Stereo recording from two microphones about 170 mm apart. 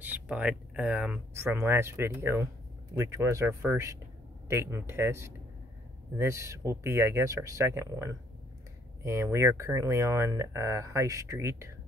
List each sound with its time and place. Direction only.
0.0 s speech: 10° right (ahead or behind)